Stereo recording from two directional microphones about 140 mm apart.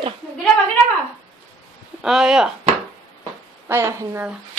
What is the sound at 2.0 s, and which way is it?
Speech, 5° right (ahead or behind).